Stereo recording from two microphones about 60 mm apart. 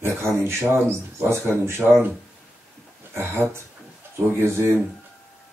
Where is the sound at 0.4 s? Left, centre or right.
Right.